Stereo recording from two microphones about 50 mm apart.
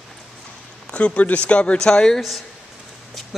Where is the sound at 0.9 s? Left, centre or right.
Left.